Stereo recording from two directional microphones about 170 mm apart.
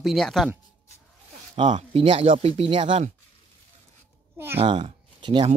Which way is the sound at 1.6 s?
35° right (ahead or behind).